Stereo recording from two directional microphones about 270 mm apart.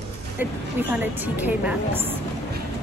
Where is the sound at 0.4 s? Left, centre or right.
Centre.